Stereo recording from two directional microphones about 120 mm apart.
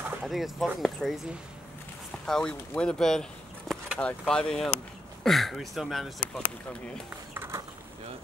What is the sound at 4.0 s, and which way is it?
Speech, 10° left (ahead or behind).